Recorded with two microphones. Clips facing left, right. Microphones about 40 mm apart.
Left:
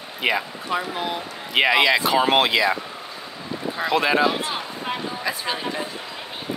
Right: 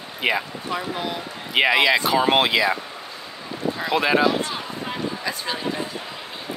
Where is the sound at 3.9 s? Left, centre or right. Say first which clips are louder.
Even; centre.